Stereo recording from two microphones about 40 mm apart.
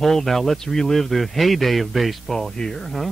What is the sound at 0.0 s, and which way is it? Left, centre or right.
Speech, centre.